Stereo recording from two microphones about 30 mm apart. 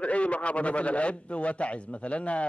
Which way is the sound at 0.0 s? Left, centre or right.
Left.